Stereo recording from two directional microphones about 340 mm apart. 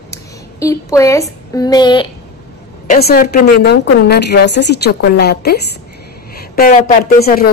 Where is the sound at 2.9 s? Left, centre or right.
Left.